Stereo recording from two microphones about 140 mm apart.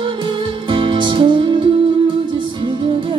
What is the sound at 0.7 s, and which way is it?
Music, 35° right (ahead or behind).